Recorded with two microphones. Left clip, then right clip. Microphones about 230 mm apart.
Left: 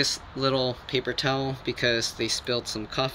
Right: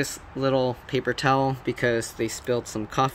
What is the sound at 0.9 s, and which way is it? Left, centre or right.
Speech, right.